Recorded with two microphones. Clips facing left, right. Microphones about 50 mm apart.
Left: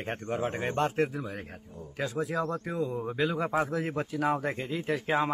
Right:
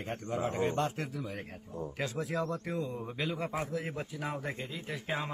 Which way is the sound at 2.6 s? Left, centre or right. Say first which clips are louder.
Left 5 dB; centre.